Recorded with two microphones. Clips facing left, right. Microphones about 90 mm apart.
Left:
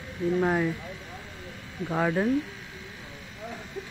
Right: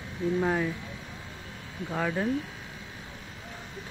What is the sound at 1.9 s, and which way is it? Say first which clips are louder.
Speech: left 4 dB; 20° left (ahead or behind).